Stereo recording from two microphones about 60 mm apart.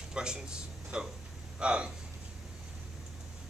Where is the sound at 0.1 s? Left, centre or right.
Centre.